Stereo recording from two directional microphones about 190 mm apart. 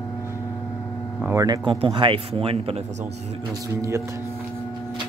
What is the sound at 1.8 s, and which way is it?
Speech, 25° right (ahead or behind).